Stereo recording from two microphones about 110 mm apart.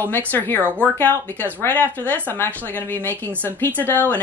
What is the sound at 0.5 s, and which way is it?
Speech, 15° right (ahead or behind).